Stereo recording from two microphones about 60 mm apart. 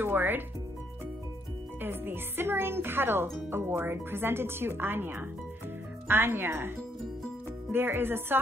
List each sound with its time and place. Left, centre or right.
0.0 s speech: right
1.8 s speech: right
7.7 s speech: right